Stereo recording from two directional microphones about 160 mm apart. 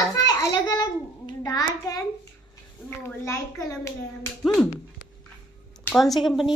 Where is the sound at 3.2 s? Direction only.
15° left (ahead or behind).